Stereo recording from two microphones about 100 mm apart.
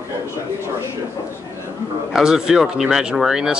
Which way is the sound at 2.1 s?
5° right (ahead or behind).